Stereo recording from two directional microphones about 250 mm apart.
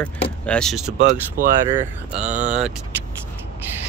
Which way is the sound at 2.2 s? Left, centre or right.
Right.